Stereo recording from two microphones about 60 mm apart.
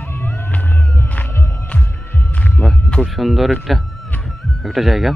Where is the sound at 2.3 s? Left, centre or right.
Left.